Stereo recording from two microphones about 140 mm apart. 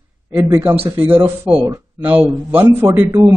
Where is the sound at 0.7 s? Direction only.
15° right (ahead or behind).